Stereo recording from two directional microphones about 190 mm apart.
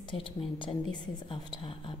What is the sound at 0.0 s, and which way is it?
Speech, 25° left (ahead or behind).